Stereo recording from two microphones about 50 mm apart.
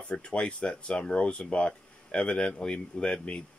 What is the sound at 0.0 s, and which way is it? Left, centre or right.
Speech, left.